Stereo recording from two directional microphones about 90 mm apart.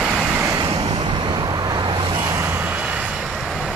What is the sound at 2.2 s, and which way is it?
Vehicle, 35° right (ahead or behind).